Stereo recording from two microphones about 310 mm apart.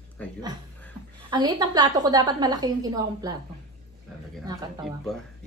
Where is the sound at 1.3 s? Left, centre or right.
Centre.